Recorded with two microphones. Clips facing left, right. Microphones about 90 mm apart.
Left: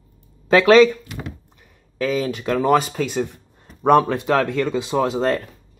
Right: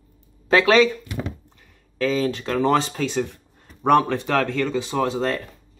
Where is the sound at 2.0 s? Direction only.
10° left (ahead or behind).